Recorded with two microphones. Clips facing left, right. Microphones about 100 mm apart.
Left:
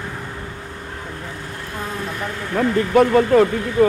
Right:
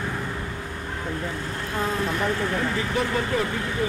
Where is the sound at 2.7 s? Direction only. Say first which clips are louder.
Left 11 dB; 55° left (ahead or behind).